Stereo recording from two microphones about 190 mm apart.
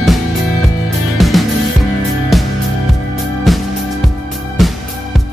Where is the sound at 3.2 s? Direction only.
Centre (ahead or behind).